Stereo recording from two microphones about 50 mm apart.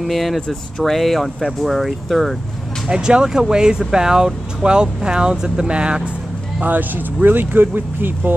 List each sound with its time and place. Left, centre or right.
0.0 s speech: centre
2.9 s speech: centre
6.6 s speech: right